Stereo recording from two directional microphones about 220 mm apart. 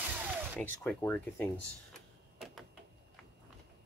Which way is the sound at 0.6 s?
10° left (ahead or behind).